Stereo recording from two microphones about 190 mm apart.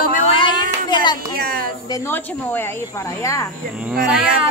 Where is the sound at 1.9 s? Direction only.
10° left (ahead or behind).